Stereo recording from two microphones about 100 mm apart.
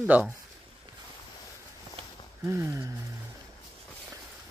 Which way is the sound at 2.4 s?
30° right (ahead or behind).